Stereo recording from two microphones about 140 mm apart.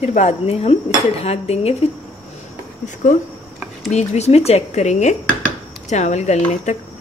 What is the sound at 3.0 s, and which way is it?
Speech, 65° left (ahead or behind).